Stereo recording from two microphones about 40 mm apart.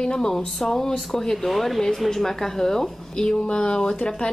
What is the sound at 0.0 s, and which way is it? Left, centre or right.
A woman's voice, centre.